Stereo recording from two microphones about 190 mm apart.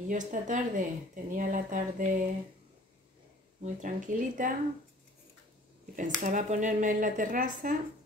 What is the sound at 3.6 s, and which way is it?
Speech, 45° right (ahead or behind).